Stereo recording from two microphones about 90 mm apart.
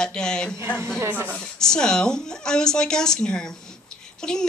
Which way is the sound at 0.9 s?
25° right (ahead or behind).